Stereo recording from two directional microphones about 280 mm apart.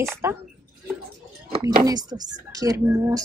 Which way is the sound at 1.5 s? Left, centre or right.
Centre.